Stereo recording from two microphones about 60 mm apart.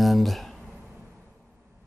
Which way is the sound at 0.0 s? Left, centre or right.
Centre.